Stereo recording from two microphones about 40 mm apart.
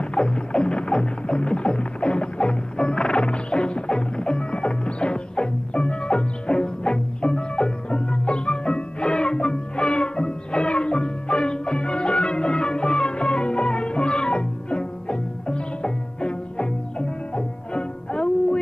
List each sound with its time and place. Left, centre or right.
0.0 s music: left